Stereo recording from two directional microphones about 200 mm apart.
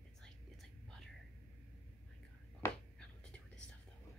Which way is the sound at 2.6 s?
15° left (ahead or behind).